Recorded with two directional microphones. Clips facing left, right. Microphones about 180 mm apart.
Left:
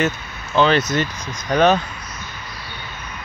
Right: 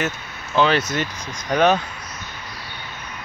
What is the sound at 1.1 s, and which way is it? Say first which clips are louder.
Speech: left 2 dB; 35° right (ahead or behind).